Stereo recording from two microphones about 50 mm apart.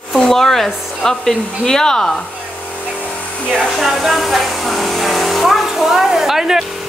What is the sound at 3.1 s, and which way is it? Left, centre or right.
Vacuum cleaner, left.